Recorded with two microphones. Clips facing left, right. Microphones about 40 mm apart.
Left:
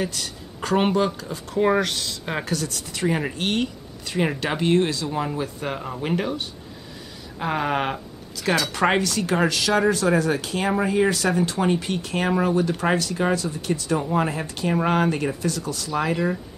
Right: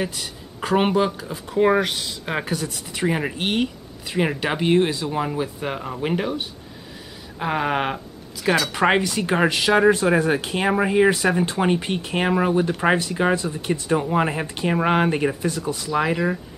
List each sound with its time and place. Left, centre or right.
0.0 s speech: centre